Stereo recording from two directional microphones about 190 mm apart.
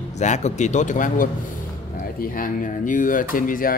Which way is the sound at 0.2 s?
40° left (ahead or behind).